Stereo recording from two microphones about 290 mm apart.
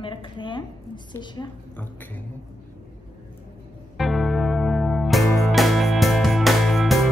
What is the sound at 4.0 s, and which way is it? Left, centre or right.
Music, centre.